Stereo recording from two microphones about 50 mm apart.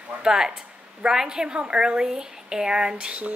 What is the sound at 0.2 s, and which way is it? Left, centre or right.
A woman's voice, centre.